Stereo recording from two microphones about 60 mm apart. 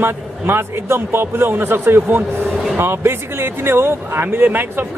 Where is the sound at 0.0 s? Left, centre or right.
Right.